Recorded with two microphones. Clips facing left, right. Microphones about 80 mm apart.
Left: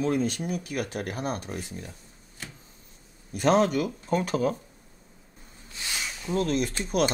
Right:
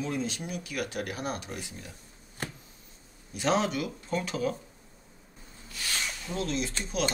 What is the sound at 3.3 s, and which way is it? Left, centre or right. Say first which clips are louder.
Speech: left 5 dB; left.